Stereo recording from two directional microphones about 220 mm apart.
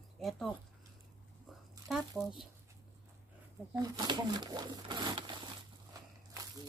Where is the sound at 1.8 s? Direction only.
Centre (ahead or behind).